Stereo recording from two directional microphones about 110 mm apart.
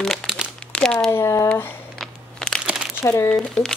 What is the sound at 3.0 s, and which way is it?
Speech, 20° left (ahead or behind).